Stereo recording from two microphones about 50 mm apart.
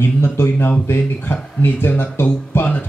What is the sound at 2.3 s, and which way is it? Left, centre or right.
Speech, left.